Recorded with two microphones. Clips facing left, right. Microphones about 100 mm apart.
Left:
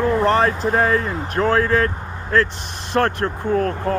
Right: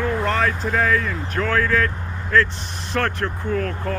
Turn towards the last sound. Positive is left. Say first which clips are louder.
# left 5 dB
turn(degrees=35)  # may be behind; listen again after turning